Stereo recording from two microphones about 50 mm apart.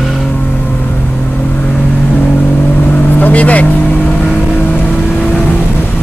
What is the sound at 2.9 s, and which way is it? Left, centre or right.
Vehicle, left.